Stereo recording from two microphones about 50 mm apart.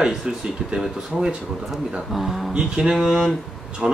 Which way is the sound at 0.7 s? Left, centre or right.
Centre.